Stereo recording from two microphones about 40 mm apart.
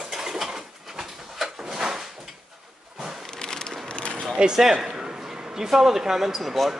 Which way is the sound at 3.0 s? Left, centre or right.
Centre.